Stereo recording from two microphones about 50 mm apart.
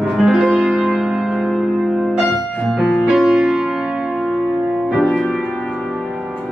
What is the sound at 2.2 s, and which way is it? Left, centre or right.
Music, left.